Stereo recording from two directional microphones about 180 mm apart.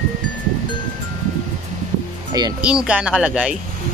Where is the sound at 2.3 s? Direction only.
20° right (ahead or behind).